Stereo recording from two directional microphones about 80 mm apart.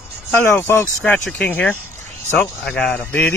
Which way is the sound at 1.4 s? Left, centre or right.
Centre.